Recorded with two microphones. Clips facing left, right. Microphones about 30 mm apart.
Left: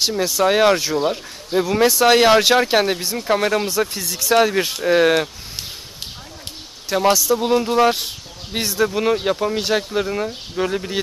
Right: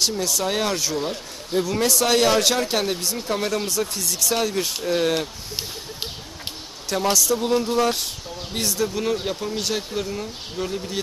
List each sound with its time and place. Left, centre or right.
0.0 s speech: left
4.4 s speech: left
6.9 s speech: centre; by 11.0 s left